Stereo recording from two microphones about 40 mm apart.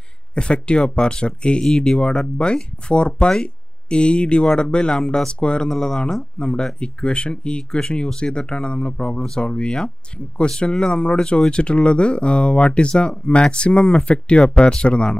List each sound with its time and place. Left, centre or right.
0.3 s speech: left
5.7 s speech: centre
6.3 s speech: left